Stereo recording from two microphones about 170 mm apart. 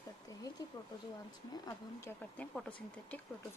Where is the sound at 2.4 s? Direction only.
5° left (ahead or behind).